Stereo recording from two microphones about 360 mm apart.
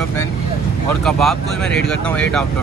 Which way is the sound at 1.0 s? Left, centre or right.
Centre.